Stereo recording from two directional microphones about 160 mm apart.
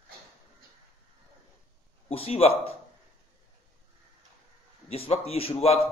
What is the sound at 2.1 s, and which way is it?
Speech, 40° left (ahead or behind).